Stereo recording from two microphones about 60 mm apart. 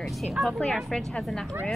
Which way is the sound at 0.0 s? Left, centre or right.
Centre.